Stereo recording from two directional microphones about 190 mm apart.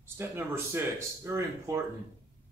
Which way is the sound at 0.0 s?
10° right (ahead or behind).